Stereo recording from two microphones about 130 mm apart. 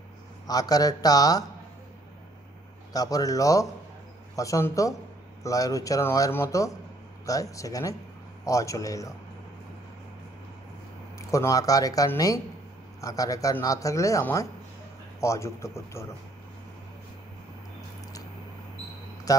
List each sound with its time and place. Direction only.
0.5 s speech: 30° left (ahead or behind)
2.9 s speech: 30° left (ahead or behind)
11.3 s speech: 25° left (ahead or behind)